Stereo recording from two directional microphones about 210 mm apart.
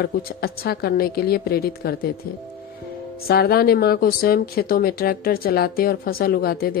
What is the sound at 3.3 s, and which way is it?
Speech, 45° left (ahead or behind).